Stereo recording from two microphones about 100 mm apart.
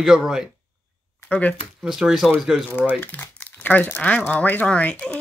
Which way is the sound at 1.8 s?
5° right (ahead or behind).